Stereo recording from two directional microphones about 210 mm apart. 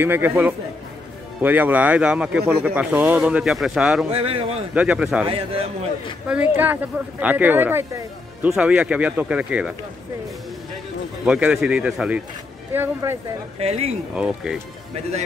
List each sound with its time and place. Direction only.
0.0 s speech: 10° right (ahead or behind)
4.1 s speech: 25° right (ahead or behind)
4.7 s speech: 5° right (ahead or behind)
5.3 s speech: 25° right (ahead or behind)
6.2 s speech: 5° right (ahead or behind)
11.2 s speech: 5° right (ahead or behind)
13.6 s speech: 30° right (ahead or behind)
14.1 s speech: 5° right (ahead or behind)